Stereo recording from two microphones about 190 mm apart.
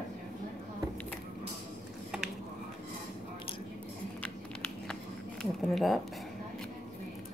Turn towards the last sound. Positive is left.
turn(degrees=0)  # may be behind; listen again after turning